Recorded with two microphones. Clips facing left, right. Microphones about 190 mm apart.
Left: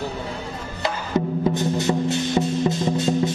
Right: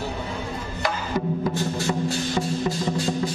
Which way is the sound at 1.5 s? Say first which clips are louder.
Left 4 dB; 20° left (ahead or behind).